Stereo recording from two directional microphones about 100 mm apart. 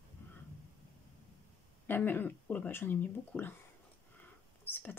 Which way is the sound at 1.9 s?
20° left (ahead or behind).